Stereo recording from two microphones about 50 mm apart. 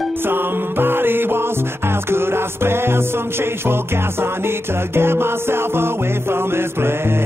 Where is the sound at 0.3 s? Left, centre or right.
Right.